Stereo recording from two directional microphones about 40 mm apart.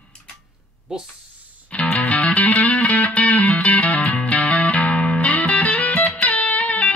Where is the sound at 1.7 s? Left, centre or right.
Left.